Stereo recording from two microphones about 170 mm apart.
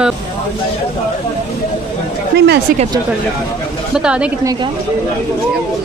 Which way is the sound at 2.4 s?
80° right.